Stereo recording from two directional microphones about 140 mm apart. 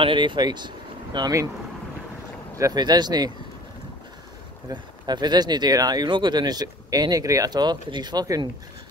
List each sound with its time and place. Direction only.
0.0 s speech: 35° right (ahead or behind)
2.5 s speech: 25° right (ahead or behind)
4.6 s speech: 30° right (ahead or behind)